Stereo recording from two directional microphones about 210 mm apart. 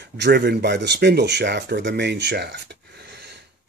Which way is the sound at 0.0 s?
50° right (ahead or behind).